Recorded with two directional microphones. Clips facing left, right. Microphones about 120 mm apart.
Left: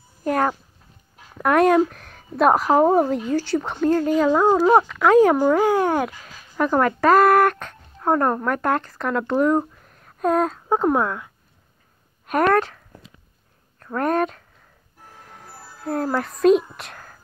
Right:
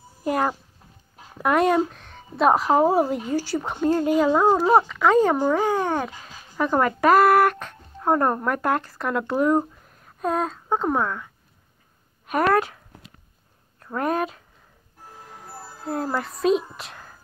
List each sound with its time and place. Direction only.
0.2 s cat: 5° right (ahead or behind)
1.4 s a woman's voice: centre (ahead or behind)
12.3 s a woman's voice: centre (ahead or behind)
13.8 s a woman's voice: 5° right (ahead or behind)
15.4 s music: 20° right (ahead or behind)
15.9 s a woman's voice: 5° right (ahead or behind)